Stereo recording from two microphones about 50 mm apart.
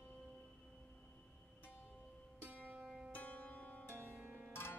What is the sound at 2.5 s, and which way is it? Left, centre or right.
Music, right.